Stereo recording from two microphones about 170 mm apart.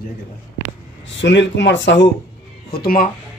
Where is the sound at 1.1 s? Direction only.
90° left.